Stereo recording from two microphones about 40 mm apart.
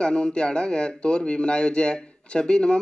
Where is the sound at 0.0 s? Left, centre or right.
Left.